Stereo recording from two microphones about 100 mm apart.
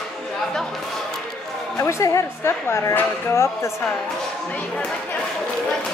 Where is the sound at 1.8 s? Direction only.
30° left (ahead or behind).